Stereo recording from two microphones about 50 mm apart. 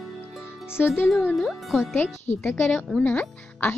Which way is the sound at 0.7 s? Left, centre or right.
Left.